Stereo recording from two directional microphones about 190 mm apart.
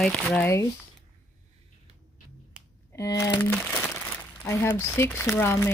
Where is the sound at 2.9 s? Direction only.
15° left (ahead or behind).